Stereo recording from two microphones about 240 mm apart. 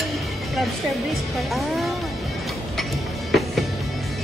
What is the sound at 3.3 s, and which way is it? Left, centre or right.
Music, centre.